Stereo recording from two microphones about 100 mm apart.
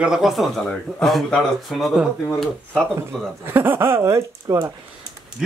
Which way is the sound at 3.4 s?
20° right (ahead or behind).